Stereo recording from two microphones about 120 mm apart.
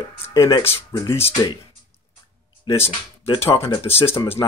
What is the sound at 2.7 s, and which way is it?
Speech, 55° left (ahead or behind).